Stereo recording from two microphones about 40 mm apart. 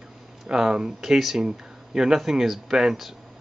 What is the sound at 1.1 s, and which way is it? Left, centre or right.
Speech, centre.